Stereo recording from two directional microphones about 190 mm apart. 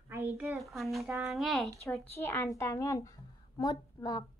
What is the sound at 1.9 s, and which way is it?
A child's voice, 10° left (ahead or behind).